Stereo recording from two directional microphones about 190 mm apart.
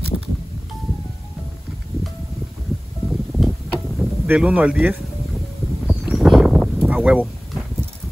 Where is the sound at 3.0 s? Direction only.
Centre (ahead or behind).